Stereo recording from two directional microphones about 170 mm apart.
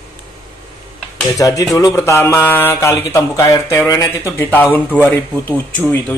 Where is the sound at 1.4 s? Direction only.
20° left (ahead or behind).